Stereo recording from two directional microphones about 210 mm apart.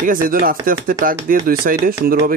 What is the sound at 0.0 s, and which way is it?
Speech, 40° right (ahead or behind).